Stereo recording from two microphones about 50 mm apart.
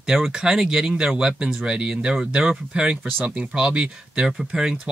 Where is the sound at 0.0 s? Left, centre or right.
Centre.